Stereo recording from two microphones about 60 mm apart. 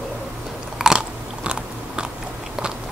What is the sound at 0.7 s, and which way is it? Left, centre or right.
Biting, centre.